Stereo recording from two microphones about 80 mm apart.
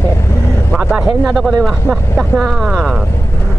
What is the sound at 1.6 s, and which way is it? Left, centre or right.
Speech, centre.